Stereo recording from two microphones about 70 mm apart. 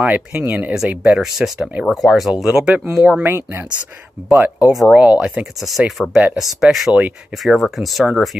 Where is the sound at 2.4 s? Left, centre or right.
Centre.